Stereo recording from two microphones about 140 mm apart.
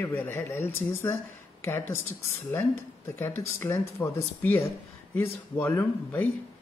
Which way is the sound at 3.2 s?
15° left (ahead or behind).